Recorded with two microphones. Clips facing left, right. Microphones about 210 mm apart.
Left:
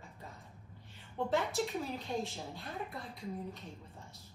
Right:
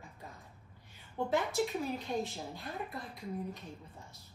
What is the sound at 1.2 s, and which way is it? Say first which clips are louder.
A woman's voice: right 1 dB; centre (ahead or behind).